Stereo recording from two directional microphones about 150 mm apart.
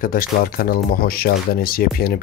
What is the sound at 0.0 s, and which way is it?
Speech, 70° left (ahead or behind).